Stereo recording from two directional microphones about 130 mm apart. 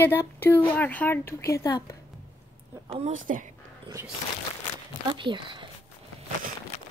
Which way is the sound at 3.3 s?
70° right (ahead or behind).